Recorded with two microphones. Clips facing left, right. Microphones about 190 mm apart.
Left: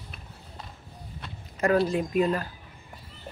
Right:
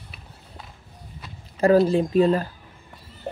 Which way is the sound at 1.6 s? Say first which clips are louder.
Right 6 dB; 30° right (ahead or behind).